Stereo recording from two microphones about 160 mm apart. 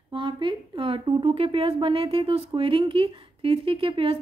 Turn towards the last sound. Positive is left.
turn(degrees=-35)  # may be behind; listen again after turning